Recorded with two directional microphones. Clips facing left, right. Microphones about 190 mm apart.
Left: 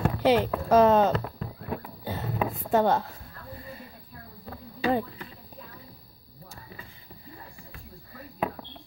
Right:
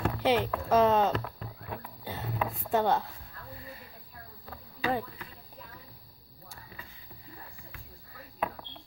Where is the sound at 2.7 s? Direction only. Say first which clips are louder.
Left 4 dB; 45° left (ahead or behind).